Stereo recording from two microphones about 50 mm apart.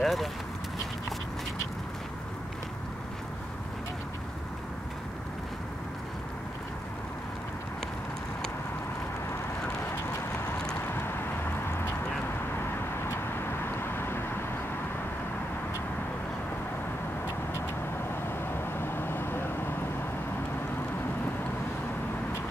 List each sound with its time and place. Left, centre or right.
0.0 s clip-clop: centre
10.9 s a sound: left
12.5 s vehicle: left
18.2 s vehicle: left